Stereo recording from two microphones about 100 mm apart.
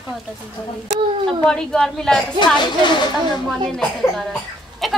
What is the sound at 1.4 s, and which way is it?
Speech, 5° left (ahead or behind).